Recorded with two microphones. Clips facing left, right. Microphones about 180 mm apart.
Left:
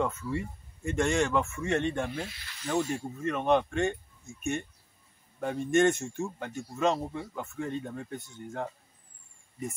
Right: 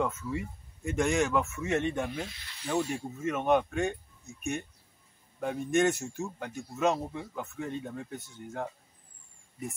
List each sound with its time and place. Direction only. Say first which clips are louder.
0.0 s speech: left 1 dB; centre (ahead or behind)